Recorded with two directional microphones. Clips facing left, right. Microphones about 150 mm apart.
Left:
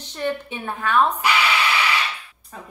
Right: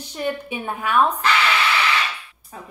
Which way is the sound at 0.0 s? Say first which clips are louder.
Even; 10° right (ahead or behind).